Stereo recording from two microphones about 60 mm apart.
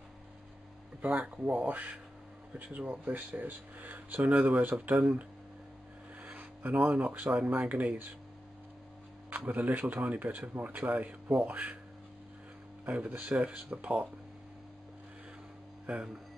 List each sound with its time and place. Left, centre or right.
1.2 s speech: right
6.3 s speech: right
9.3 s speech: right
12.8 s speech: right